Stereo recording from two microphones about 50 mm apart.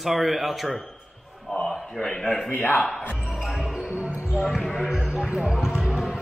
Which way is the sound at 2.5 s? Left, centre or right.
Left.